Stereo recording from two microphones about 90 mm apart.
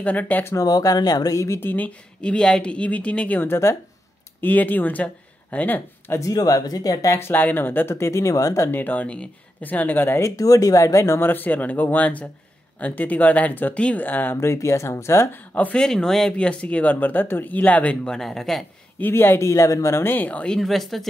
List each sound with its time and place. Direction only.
0.0 s speech: 15° left (ahead or behind)
0.7 s speech: 45° left (ahead or behind)
1.6 s speech: 20° left (ahead or behind)
2.2 s speech: 10° left (ahead or behind)
6.1 s speech: 40° left (ahead or behind)
7.2 s speech: 25° left (ahead or behind)
8.7 s speech: 20° left (ahead or behind)
10.3 s speech: 40° left (ahead or behind)
15.5 s speech: 15° left (ahead or behind)
18.9 s speech: 25° left (ahead or behind)
20.5 s speech: centre (ahead or behind)